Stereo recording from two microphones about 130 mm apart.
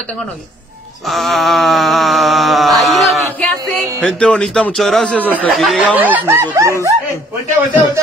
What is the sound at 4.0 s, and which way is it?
Speech, 5° left (ahead or behind).